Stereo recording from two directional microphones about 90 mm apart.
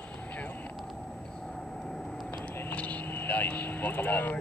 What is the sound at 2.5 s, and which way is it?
Vehicle, 20° left (ahead or behind).